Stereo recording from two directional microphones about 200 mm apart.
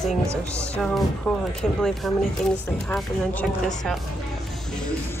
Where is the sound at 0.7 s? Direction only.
Centre (ahead or behind).